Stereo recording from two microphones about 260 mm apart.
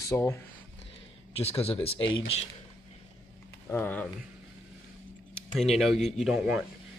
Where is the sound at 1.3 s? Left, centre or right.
Left.